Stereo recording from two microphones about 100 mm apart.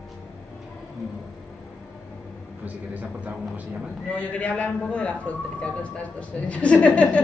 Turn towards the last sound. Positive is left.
turn(degrees=15)  # may be behind; listen again after turning